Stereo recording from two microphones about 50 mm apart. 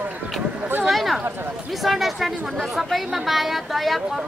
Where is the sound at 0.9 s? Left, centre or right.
Centre.